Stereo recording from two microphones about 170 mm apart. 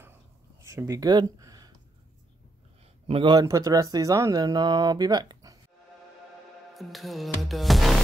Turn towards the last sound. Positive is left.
turn(degrees=0)  # may be behind; listen again after turning